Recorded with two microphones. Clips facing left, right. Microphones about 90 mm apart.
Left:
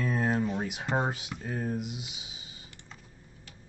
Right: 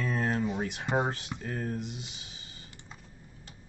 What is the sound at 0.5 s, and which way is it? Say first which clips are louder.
Speech: even; 5° left (ahead or behind).